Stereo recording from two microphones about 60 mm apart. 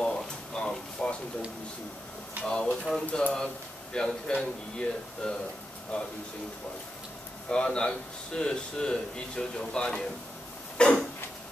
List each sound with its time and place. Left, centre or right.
0.0 s a sound: centre
2.4 s speech: centre
2.7 s speech: centre
3.1 s speech: left
7.4 s speech: centre
10.8 s a sound: centre